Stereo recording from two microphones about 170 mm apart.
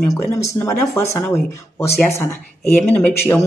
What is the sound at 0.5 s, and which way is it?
Speech, 15° left (ahead or behind).